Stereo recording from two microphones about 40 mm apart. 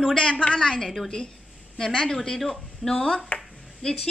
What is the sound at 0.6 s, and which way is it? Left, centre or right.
Speech, centre.